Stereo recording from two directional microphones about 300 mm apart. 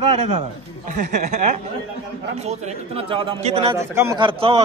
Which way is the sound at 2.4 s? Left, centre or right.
Right.